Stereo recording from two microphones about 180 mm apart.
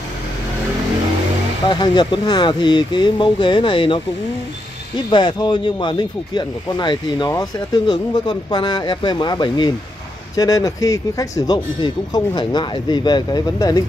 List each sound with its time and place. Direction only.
1.7 s speech: 25° left (ahead or behind)
5.1 s speech: 25° left (ahead or behind)